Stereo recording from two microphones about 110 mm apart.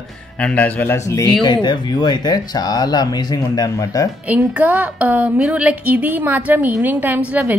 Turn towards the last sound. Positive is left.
turn(degrees=-10)  # may be behind; listen again after turning